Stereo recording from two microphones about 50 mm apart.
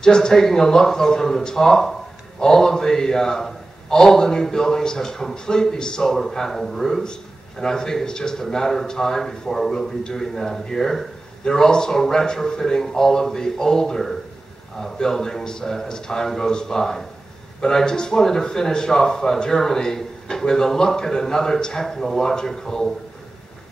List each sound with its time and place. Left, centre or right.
0.0 s speech: centre